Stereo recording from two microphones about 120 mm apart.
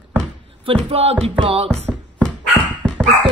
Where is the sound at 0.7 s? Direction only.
55° right (ahead or behind).